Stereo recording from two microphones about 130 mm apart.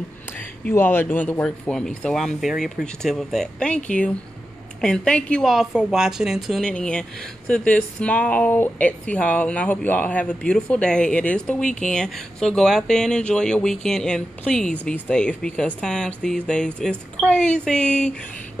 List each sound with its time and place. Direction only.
0.7 s a woman's voice: 15° left (ahead or behind)